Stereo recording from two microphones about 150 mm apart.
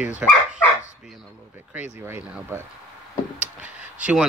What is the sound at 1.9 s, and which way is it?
Speech, 15° right (ahead or behind).